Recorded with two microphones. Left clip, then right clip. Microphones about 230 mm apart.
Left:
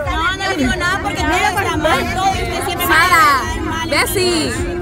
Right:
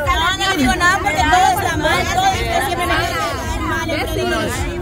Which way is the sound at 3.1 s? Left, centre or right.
Left.